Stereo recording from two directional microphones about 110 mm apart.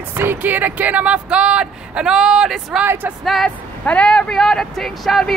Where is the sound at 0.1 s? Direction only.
20° right (ahead or behind); by 2.8 s 5° right (ahead or behind).